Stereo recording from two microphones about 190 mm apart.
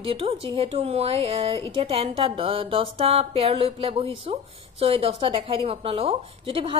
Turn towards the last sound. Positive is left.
turn(degrees=-25)  # may be behind; listen again after turning